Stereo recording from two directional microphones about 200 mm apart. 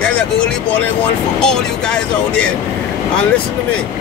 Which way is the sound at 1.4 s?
5° left (ahead or behind).